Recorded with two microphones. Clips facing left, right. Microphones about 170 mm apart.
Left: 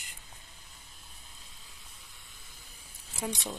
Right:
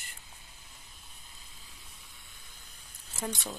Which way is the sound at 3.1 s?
15° left (ahead or behind).